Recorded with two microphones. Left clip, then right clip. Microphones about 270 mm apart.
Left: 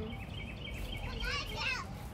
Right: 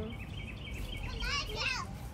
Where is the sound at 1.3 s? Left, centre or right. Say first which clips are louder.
Right 2 dB; centre.